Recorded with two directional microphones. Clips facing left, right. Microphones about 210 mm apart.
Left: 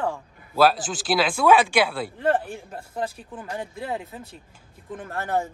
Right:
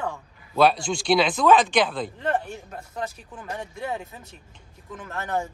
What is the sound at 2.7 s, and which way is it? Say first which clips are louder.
Speech: left 3 dB; 30° left (ahead or behind).